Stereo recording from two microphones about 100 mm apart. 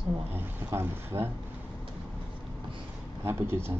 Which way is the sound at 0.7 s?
25° right (ahead or behind).